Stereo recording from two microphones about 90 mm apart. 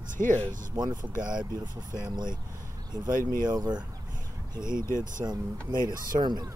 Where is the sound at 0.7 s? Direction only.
50° right (ahead or behind).